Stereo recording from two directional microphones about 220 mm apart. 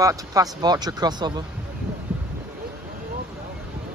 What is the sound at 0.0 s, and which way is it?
Speech, 15° right (ahead or behind).